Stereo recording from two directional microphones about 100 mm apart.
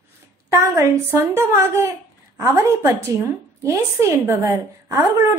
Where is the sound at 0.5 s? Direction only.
25° right (ahead or behind).